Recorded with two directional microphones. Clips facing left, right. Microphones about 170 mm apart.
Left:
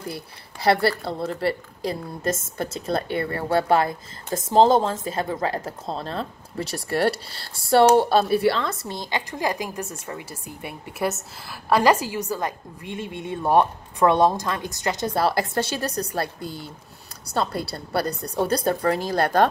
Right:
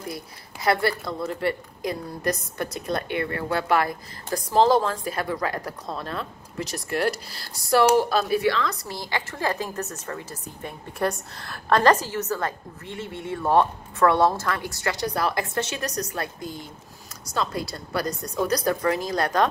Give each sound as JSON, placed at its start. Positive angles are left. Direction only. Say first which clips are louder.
{"t": 0.1, "sound": "a woman's voice", "louder": "left 1 dB", "side_deg": 30}